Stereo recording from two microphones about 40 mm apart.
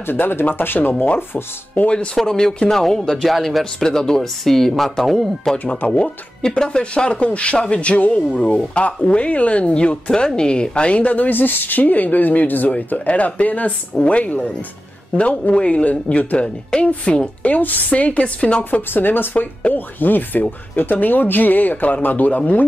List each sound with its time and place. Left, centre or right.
0.0 s speech: left
2.1 s speech: centre
5.9 s speech: left
11.2 s speech: left
18.6 s speech: left